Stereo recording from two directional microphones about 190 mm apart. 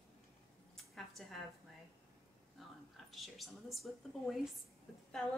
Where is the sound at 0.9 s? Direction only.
Centre (ahead or behind).